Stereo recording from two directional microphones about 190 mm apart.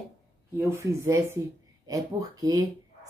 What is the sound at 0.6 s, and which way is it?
Speech, 15° right (ahead or behind).